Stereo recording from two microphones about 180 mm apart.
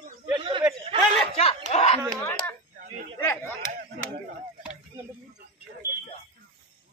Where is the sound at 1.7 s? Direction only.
35° left (ahead or behind).